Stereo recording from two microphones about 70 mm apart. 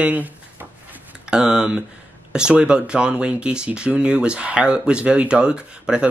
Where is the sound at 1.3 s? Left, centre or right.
Centre.